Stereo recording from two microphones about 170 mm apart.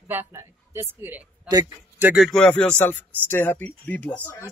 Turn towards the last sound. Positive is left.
turn(degrees=10)  # may be behind; listen again after turning